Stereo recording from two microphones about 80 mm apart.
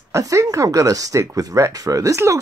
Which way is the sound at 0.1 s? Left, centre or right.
Right.